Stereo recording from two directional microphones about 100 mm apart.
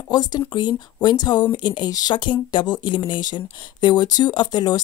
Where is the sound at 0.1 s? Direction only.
45° left (ahead or behind).